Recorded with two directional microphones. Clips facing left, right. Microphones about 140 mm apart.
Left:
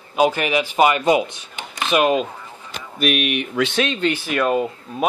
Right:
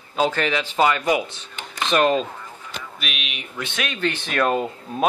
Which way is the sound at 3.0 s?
50° left (ahead or behind).